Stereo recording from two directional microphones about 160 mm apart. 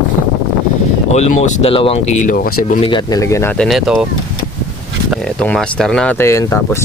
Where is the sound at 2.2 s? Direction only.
55° left (ahead or behind).